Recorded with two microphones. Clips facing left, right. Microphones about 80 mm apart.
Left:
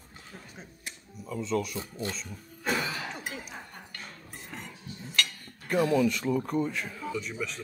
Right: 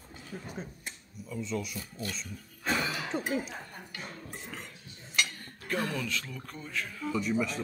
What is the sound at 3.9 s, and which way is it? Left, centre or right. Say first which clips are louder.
Cutlery: right 3 dB; centre.